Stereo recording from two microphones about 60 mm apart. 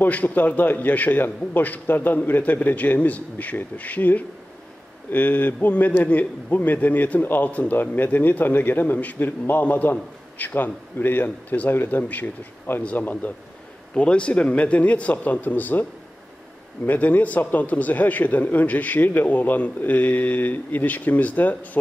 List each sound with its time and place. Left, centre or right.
0.0 s a man's voice: left
13.9 s a man's voice: centre